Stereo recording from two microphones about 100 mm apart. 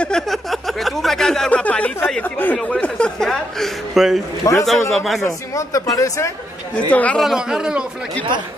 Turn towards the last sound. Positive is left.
turn(degrees=-5)  # may be behind; listen again after turning